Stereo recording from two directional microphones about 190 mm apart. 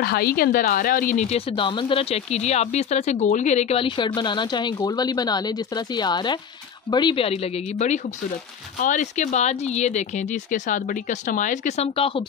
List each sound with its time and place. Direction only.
0.0 s speech: 55° left (ahead or behind); by 7.3 s 25° left (ahead or behind)
8.8 s speech: 40° left (ahead or behind)